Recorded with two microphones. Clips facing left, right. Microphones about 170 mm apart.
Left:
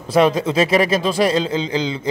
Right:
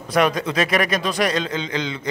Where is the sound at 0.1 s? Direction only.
30° left (ahead or behind).